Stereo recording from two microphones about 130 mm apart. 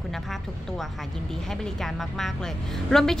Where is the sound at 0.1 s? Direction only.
Centre (ahead or behind).